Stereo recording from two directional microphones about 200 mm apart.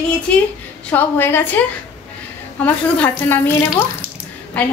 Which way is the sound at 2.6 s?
5° left (ahead or behind).